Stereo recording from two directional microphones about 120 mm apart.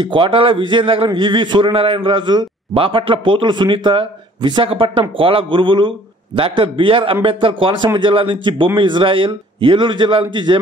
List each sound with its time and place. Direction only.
0.0 s a man's voice: 45° right (ahead or behind)